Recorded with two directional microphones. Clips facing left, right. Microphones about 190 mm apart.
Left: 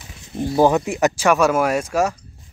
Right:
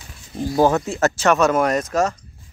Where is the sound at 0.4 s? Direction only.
15° left (ahead or behind).